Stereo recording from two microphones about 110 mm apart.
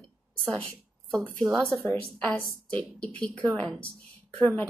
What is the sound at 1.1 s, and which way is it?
A woman's voice, 5° left (ahead or behind).